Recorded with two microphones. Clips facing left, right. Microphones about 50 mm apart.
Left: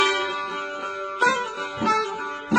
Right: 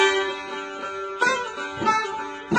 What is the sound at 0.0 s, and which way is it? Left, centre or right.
Music, centre.